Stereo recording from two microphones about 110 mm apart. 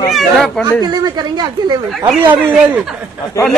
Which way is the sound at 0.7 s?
40° right (ahead or behind).